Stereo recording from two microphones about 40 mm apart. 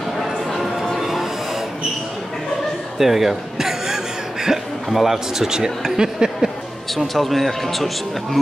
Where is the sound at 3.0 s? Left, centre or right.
Centre.